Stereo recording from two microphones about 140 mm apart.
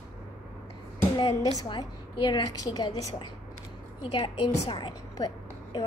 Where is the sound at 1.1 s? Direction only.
30° left (ahead or behind).